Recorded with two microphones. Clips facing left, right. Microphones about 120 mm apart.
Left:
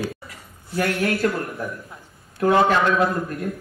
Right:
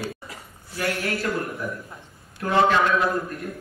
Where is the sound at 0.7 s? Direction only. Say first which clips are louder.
Left 5 dB; 55° left (ahead or behind).